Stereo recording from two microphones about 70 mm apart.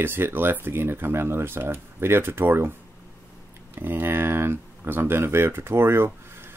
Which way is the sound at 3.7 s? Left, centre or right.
Right.